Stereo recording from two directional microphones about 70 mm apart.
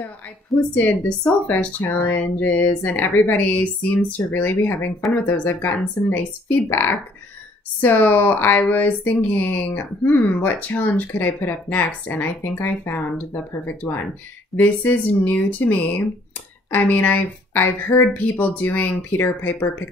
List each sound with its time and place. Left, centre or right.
0.7 s speech: centre